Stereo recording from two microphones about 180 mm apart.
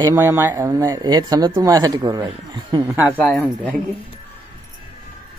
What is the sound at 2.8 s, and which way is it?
Speech, 10° right (ahead or behind).